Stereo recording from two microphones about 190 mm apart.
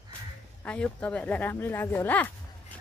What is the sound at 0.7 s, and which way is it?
Speech, 5° left (ahead or behind).